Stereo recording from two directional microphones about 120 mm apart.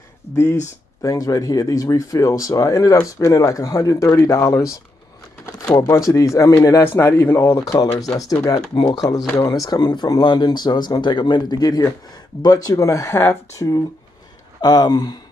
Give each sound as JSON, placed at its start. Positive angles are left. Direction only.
{"t": 1.0, "sound": "speech", "side_deg": 30}
{"t": 5.8, "sound": "speech", "side_deg": 30}